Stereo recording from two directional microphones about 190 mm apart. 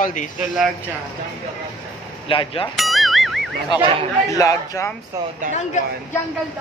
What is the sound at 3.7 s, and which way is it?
Speech, 25° left (ahead or behind).